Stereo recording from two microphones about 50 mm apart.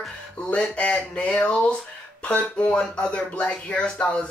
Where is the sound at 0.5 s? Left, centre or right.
Left.